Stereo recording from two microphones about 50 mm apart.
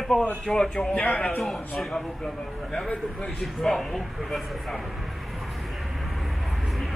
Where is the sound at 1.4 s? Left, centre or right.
Centre.